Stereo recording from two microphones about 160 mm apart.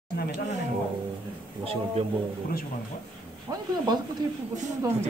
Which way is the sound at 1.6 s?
35° right (ahead or behind).